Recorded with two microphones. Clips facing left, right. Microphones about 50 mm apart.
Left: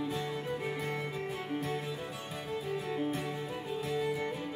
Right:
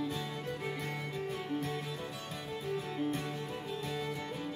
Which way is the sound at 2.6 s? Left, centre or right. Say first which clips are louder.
Even; centre.